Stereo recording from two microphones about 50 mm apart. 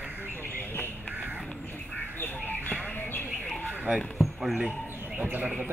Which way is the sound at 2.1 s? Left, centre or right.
Left.